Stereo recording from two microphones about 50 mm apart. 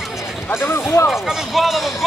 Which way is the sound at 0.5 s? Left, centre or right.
Left.